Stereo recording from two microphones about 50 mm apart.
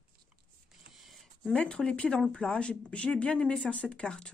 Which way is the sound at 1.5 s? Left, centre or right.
Left.